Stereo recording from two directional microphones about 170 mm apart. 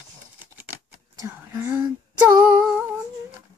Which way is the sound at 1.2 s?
15° right (ahead or behind).